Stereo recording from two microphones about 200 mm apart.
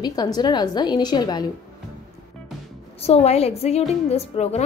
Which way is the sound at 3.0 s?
30° left (ahead or behind).